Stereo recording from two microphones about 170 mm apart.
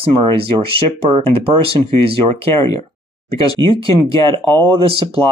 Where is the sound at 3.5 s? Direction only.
25° left (ahead or behind).